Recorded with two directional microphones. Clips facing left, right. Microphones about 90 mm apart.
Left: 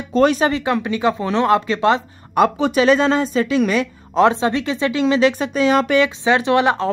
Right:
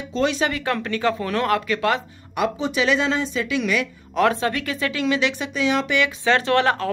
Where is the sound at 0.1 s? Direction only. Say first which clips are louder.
Left 7 dB; 45° left (ahead or behind).